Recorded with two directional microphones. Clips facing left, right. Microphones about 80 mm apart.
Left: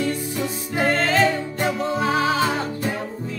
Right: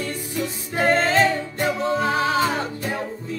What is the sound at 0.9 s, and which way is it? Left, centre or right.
Music, right.